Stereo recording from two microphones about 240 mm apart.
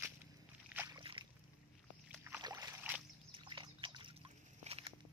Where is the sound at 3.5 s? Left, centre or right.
Centre.